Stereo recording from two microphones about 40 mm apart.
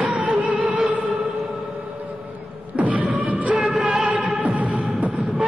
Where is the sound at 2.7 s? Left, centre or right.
Right.